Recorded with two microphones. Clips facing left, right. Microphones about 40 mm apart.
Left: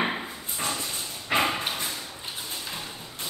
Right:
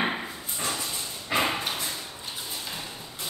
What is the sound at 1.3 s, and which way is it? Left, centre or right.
Dog, left.